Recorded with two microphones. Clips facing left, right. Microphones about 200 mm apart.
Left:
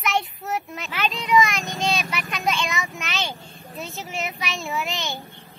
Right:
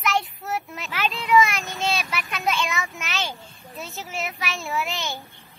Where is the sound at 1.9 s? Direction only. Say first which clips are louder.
Left 1 dB; centre (ahead or behind).